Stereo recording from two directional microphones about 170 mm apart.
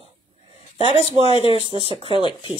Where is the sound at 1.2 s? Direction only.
35° left (ahead or behind).